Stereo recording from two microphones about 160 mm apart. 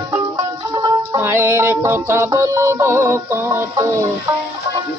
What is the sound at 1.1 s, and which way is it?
Music, 15° right (ahead or behind).